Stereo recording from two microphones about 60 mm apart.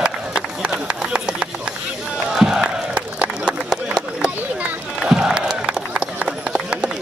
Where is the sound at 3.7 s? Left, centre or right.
Centre.